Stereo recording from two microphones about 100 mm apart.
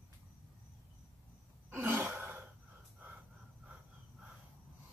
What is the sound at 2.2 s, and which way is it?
Cough, 15° right (ahead or behind).